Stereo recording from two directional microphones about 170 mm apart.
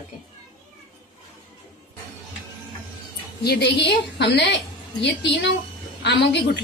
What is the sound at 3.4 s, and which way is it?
A woman's voice, 75° left (ahead or behind).